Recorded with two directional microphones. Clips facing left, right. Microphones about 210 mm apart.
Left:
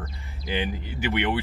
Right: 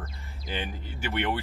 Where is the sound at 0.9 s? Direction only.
15° left (ahead or behind).